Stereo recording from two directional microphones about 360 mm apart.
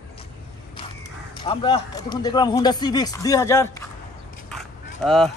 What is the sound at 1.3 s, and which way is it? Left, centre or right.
Speech, centre.